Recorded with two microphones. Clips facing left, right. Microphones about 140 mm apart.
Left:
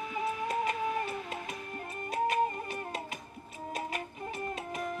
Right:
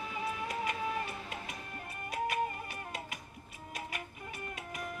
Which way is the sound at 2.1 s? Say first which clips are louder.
Left 5 dB; 30° left (ahead or behind).